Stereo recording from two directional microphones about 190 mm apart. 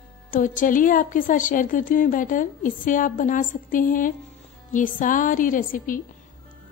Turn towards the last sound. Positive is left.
turn(degrees=45)  # may be behind; listen again after turning